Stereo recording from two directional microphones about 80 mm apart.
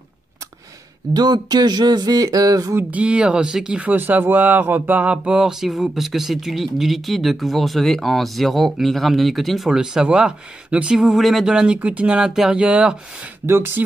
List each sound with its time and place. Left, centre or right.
1.1 s speech: right
2.9 s speech: centre
11.1 s speech: centre
13.5 s speech: right